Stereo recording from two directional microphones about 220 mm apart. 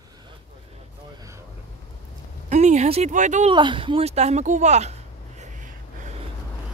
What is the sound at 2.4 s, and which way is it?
Speech, 30° right (ahead or behind).